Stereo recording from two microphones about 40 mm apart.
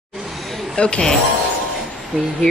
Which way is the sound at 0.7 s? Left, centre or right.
Left.